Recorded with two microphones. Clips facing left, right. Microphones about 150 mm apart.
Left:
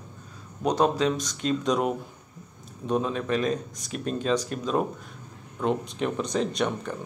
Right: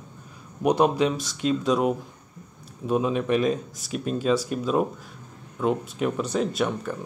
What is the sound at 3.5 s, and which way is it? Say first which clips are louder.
Speech: right 1 dB; 5° right (ahead or behind).